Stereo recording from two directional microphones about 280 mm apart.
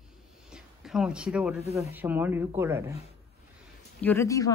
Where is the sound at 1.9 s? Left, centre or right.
Centre.